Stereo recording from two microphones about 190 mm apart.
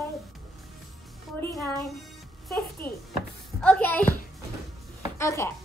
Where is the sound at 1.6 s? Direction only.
5° left (ahead or behind).